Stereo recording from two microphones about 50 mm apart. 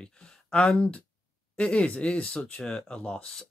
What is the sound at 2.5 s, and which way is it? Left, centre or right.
Speech, centre.